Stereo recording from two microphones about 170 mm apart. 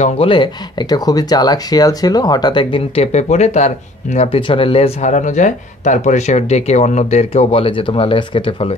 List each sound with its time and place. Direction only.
0.0 s speech: 30° left (ahead or behind)